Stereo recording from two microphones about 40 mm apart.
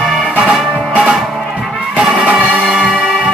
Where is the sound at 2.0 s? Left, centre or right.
Centre.